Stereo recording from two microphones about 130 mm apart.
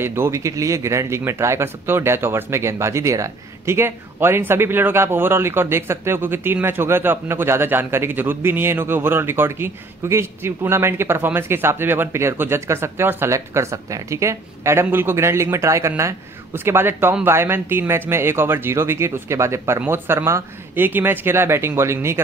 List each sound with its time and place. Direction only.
0.0 s speech: 20° right (ahead or behind)